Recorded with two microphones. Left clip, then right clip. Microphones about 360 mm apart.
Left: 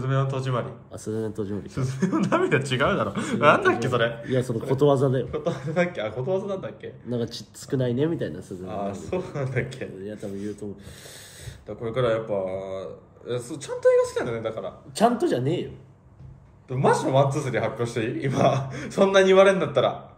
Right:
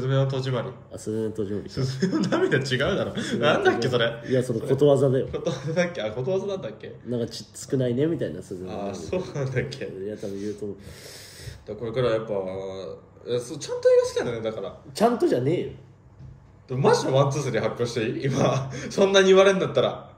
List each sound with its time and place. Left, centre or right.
0.0 s a man's voice: centre
2.7 s speech: left
3.3 s a man's voice: centre
11.8 s a man's voice: centre
12.4 s speech: left
13.3 s a man's voice: centre
16.6 s a man's voice: centre